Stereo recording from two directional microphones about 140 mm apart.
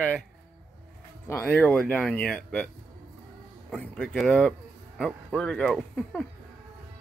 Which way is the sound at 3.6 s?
5° left (ahead or behind).